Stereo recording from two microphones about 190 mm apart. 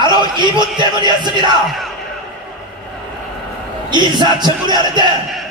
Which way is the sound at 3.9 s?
25° right (ahead or behind).